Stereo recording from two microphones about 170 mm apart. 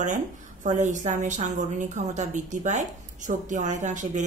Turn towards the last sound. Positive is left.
turn(degrees=-45)  # may be behind; listen again after turning